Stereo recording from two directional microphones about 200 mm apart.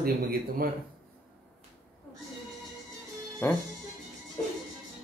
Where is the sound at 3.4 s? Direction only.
10° left (ahead or behind).